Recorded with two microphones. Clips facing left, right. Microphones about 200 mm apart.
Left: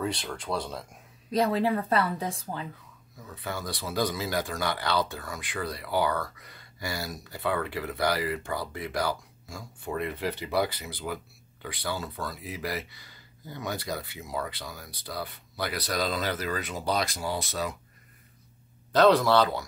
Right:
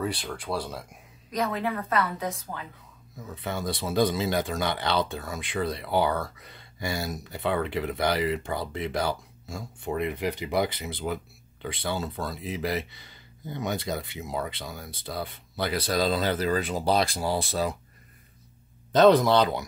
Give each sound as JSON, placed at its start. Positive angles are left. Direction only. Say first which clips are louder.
{"t": 0.0, "sound": "speech", "louder": "right 1 dB", "side_deg": -5}
{"t": 1.3, "sound": "a woman's voice", "louder": "left 4 dB", "side_deg": 30}
{"t": 3.3, "sound": "speech", "louder": "right 4 dB", "side_deg": -25}
{"t": 18.9, "sound": "speech", "louder": "right 2 dB", "side_deg": -20}